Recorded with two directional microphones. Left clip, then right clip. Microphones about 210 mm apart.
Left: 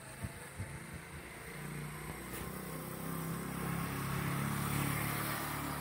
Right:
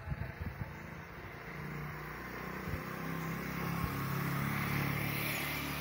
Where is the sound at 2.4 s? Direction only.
20° right (ahead or behind).